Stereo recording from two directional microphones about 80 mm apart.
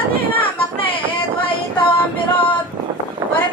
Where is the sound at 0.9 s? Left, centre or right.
Left.